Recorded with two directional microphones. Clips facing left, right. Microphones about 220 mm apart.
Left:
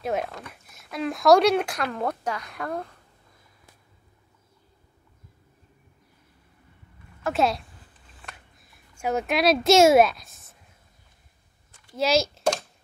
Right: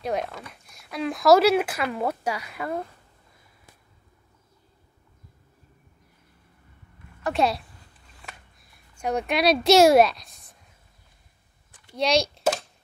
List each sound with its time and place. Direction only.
0.0 s speech: centre (ahead or behind)
7.2 s speech: centre (ahead or behind)
8.9 s speech: 5° left (ahead or behind)
11.9 s a sound: 5° left (ahead or behind)